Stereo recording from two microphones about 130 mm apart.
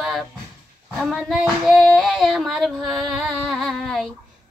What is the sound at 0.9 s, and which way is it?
Child singing, centre (ahead or behind).